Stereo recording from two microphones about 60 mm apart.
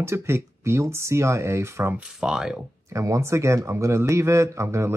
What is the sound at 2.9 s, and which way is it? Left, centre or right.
Speech, right.